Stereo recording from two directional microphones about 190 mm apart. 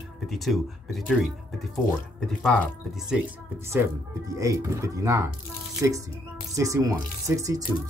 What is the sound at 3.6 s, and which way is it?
Speech, 15° right (ahead or behind).